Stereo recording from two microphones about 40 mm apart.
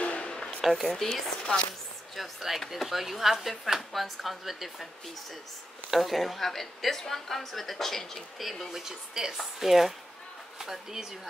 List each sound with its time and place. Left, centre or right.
0.0 s a sound: left
0.3 s a sound: left
0.6 s a woman's voice: centre
1.4 s speech: left
2.1 s a woman's voice: centre
5.9 s a woman's voice: centre
8.4 s a woman's voice: centre